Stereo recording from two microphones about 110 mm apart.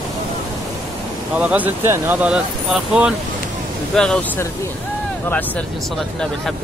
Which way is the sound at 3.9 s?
5° left (ahead or behind).